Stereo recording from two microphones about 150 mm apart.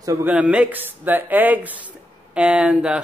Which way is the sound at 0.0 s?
20° right (ahead or behind).